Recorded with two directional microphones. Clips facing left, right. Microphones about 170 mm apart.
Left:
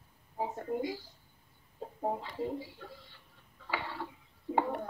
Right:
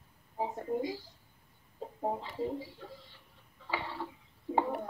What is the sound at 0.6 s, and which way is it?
Speech, 20° right (ahead or behind).